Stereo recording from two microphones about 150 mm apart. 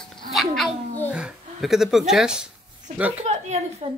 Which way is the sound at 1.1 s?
5° right (ahead or behind).